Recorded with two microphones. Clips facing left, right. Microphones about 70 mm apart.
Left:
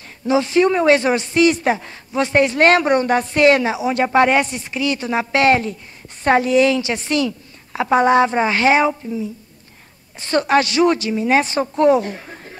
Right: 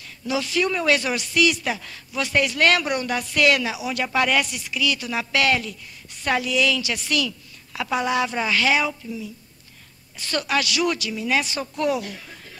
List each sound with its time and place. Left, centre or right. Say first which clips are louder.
0.3 s speech: left 8 dB; left